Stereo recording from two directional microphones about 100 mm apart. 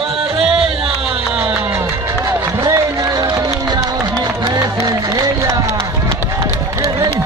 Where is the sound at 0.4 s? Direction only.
70° right (ahead or behind).